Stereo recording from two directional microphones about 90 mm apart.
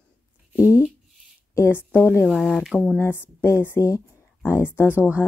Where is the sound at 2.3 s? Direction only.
5° left (ahead or behind).